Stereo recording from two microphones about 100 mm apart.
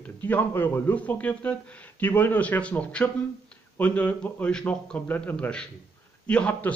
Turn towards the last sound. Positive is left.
turn(degrees=10)  # may be behind; listen again after turning